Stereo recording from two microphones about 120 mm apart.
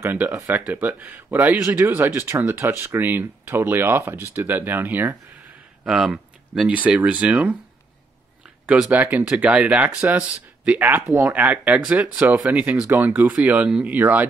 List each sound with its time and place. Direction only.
0.0 s speech: 15° right (ahead or behind)
5.9 s speech: 5° right (ahead or behind)
8.6 s speech: 10° right (ahead or behind)